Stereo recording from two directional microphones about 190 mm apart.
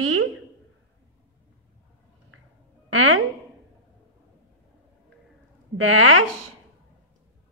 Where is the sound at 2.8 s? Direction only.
90° right.